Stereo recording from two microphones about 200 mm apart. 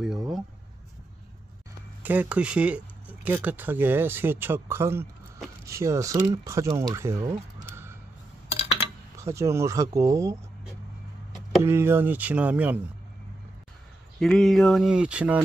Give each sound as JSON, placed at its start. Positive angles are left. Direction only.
{"t": 0.0, "sound": "a sound", "side_deg": 0}
{"t": 2.0, "sound": "speech", "side_deg": -5}
{"t": 7.2, "sound": "a sound", "side_deg": -15}
{"t": 9.2, "sound": "speech", "side_deg": -15}
{"t": 11.6, "sound": "speech", "side_deg": -10}
{"t": 14.2, "sound": "speech", "side_deg": 0}